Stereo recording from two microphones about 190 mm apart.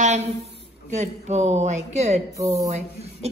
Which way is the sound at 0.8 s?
40° right (ahead or behind).